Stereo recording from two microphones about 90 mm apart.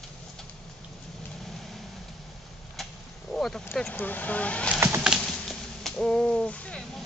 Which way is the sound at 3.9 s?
20° left (ahead or behind).